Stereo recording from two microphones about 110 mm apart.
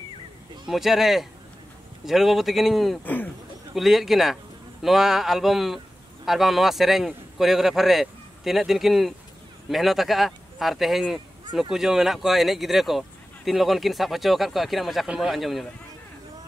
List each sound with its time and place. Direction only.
0.7 s a man's voice: 5° right (ahead or behind)
3.0 s speech: 15° left (ahead or behind)
3.7 s a man's voice: centre (ahead or behind)